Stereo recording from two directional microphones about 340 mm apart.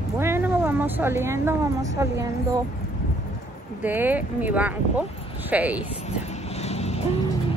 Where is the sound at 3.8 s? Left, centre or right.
Centre.